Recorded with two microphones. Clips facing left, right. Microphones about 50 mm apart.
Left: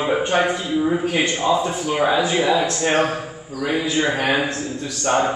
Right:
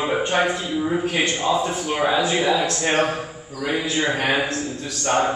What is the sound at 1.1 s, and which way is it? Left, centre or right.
Speech, left.